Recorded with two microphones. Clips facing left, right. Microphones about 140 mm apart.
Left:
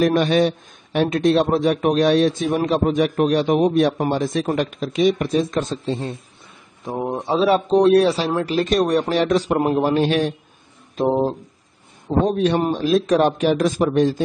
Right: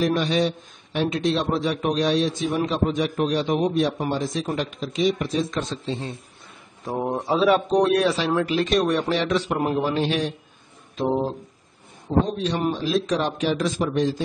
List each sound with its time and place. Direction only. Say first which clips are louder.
0.0 s a man's voice: left 5 dB; 55° left (ahead or behind)
6.8 s speech: left 1 dB; 5° left (ahead or behind)
7.2 s a man's voice: left 2 dB; 30° left (ahead or behind); by 12.2 s 55° left (ahead or behind)
12.5 s a man's voice: left 5 dB; 45° left (ahead or behind)